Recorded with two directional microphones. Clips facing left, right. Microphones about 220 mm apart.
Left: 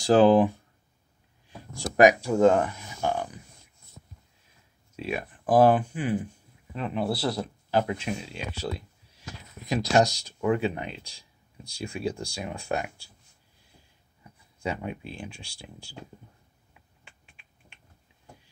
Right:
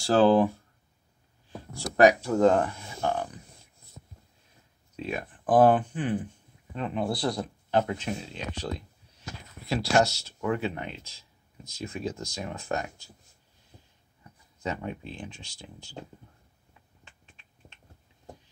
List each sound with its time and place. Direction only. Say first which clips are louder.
0.0 s speech: left 2 dB; 15° left (ahead or behind)
2.0 s speech: left 1 dB; 10° left (ahead or behind)
4.9 s speech: left 2 dB; 10° left (ahead or behind)
14.6 s speech: left 1 dB; 15° left (ahead or behind)
16.7 s finger snapping: even; 10° left (ahead or behind)